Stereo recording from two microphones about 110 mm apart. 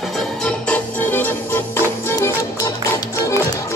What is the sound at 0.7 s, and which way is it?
Music, 15° left (ahead or behind).